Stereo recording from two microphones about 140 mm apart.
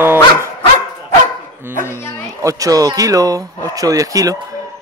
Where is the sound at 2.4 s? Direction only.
25° right (ahead or behind).